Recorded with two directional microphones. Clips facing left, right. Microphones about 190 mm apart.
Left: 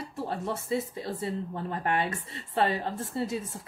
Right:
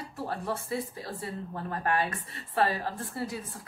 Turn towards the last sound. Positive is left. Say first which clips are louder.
# left 4 dB
turn(degrees=25)  # may be behind; listen again after turning